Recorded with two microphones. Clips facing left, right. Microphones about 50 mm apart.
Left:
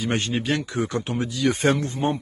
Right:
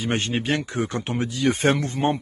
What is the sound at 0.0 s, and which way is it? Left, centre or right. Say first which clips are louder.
A man's voice: even; right.